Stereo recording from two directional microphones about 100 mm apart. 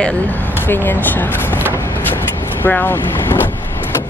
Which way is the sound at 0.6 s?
20° left (ahead or behind).